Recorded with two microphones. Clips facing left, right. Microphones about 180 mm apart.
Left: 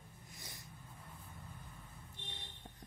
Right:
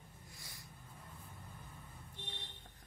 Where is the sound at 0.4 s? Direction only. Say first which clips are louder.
Left 4 dB; 20° left (ahead or behind).